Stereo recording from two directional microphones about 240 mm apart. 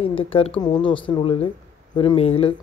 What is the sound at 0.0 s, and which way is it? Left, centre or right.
Speech, left.